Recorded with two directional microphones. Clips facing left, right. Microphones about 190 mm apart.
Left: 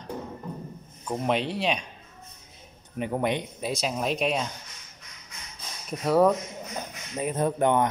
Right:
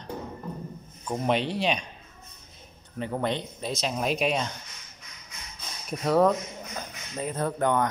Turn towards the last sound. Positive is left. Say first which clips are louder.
# left 2 dB
turn(degrees=20)  # may be behind; listen again after turning